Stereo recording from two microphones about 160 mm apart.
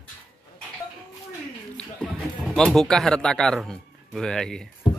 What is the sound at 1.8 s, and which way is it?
Speech, 5° left (ahead or behind).